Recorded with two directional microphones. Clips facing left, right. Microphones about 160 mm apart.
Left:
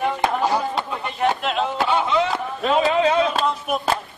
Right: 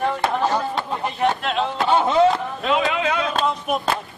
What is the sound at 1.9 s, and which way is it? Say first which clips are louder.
Chop: right 5 dB; 40° right (ahead or behind).